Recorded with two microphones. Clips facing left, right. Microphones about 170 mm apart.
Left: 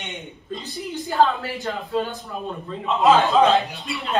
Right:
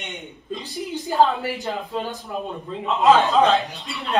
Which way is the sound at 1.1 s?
15° right (ahead or behind).